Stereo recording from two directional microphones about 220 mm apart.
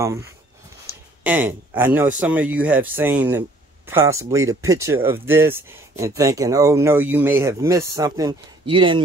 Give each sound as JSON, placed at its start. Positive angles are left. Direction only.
{"t": 0.0, "sound": "speech", "side_deg": -15}
{"t": 0.8, "sound": "a sound", "side_deg": -10}
{"t": 1.8, "sound": "speech", "side_deg": -10}